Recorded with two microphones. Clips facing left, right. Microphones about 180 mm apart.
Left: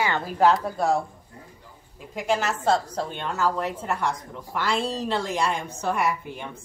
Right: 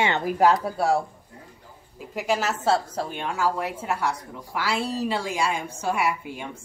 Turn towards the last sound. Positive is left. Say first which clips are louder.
# even
turn(degrees=-10)  # may be behind; listen again after turning